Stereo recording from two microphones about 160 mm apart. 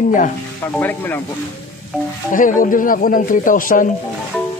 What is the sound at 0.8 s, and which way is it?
Speech, 10° left (ahead or behind).